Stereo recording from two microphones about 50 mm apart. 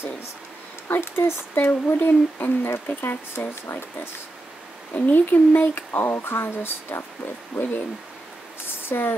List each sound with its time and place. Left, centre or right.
0.8 s speech: left
1.6 s speech: left
3.4 s speech: left
4.9 s speech: left
8.6 s a sound: left